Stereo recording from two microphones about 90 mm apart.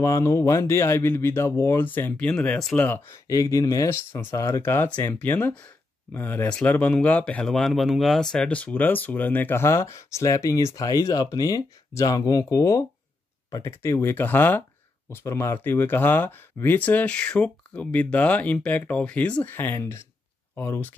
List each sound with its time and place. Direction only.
0.0 s speech: 35° left (ahead or behind); by 2.6 s 15° left (ahead or behind)
3.1 s speech: 35° left (ahead or behind)
4.6 s speech: 20° left (ahead or behind)